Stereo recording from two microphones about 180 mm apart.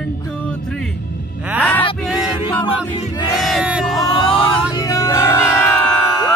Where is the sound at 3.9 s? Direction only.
25° left (ahead or behind).